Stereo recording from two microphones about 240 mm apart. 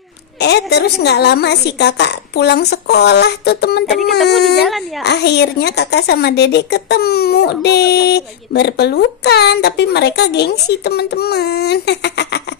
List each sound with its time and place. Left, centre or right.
0.4 s a woman's voice: left
4.2 s speech: centre
5.0 s a woman's voice: left